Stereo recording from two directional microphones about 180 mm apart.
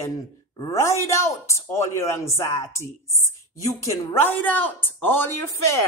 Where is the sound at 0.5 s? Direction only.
20° left (ahead or behind).